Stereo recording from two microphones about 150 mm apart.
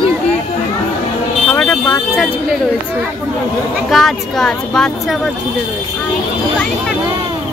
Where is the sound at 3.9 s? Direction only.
Centre (ahead or behind).